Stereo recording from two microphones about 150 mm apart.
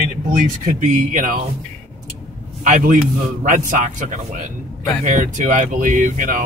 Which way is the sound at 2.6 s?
60° right (ahead or behind).